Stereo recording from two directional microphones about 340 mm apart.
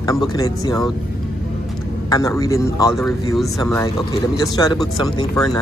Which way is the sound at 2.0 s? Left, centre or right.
Centre.